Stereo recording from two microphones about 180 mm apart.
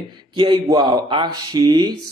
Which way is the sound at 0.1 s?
25° right (ahead or behind).